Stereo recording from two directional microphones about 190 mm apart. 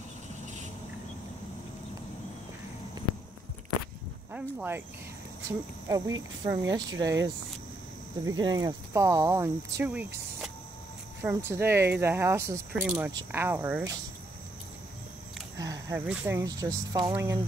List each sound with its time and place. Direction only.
4.3 s speech: 10° right (ahead or behind)
5.9 s speech: 20° right (ahead or behind)
6.7 s speech: 75° right (ahead or behind)
8.3 s speech: 20° right (ahead or behind)
15.6 s speech: 20° right (ahead or behind)